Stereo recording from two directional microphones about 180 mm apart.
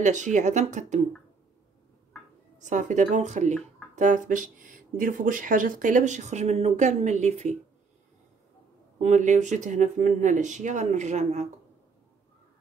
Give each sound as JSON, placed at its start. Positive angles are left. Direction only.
{"t": 0.0, "sound": "speech", "side_deg": -45}
{"t": 2.6, "sound": "speech", "side_deg": -45}
{"t": 8.9, "sound": "speech", "side_deg": -40}